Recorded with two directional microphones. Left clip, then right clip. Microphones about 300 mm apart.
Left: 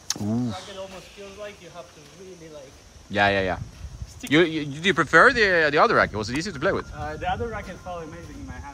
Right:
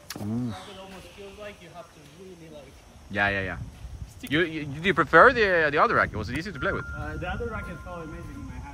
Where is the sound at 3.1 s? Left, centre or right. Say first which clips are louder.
Left 5 dB; centre.